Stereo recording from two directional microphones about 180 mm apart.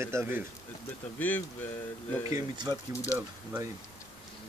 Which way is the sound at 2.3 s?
20° right (ahead or behind).